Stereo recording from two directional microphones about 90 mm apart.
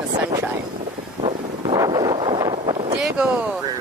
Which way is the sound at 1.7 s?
45° right (ahead or behind).